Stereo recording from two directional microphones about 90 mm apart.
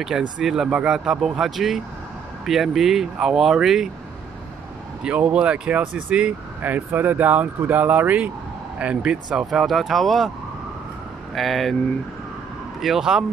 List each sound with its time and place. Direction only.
0.0 s speech: 10° right (ahead or behind)
5.0 s speech: 10° right (ahead or behind)
11.3 s speech: centre (ahead or behind)
12.8 s speech: 5° right (ahead or behind)